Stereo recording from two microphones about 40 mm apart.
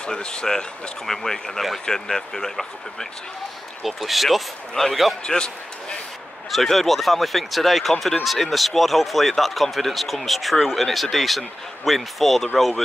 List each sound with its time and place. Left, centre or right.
0.0 s speech: left
1.0 s speech: centre
3.8 s speech: centre
5.2 s basketball bounce: left
6.5 s speech: centre